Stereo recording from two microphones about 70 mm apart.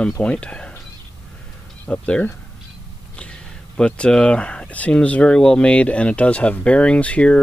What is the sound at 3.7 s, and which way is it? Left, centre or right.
Speech, centre.